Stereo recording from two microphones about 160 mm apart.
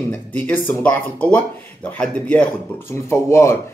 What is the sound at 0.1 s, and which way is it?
Speech, 10° left (ahead or behind).